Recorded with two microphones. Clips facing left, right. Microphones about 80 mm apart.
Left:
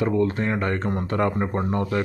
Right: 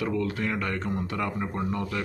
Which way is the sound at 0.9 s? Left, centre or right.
Left.